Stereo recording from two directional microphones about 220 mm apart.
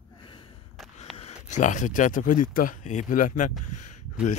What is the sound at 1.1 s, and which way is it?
Speech, 30° left (ahead or behind).